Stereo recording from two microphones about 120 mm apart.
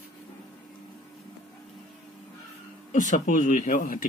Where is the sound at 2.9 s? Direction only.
90° left.